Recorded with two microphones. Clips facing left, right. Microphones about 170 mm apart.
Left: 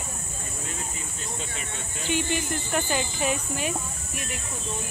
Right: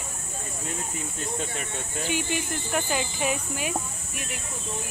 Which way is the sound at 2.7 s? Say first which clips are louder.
Even; 5° right (ahead or behind).